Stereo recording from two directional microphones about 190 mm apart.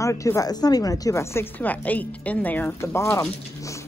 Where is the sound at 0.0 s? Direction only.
15° left (ahead or behind).